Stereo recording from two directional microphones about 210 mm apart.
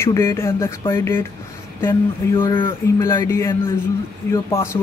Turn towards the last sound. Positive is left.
turn(degrees=15)  # may be behind; listen again after turning